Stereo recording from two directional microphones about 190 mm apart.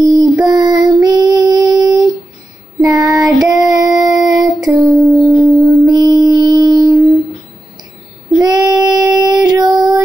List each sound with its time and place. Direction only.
0.0 s child singing: 20° right (ahead or behind)
1.0 s female singing: 20° right (ahead or behind)
2.8 s child singing: 20° right (ahead or behind)
3.7 s a sound: 20° right (ahead or behind)
4.6 s a sound: centre (ahead or behind)
5.9 s mantra: 20° right (ahead or behind)
8.4 s child singing: 20° right (ahead or behind)